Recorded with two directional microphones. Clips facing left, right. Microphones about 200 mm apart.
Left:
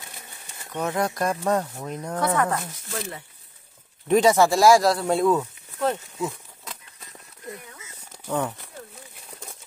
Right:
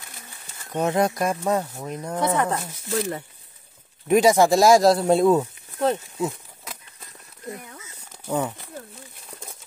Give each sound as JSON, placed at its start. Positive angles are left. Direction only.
{"t": 0.7, "sound": "speech", "side_deg": -25}
{"t": 1.1, "sound": "speech", "side_deg": -10}
{"t": 2.1, "sound": "speech", "side_deg": -20}
{"t": 4.1, "sound": "speech", "side_deg": -10}
{"t": 8.3, "sound": "speech", "side_deg": -10}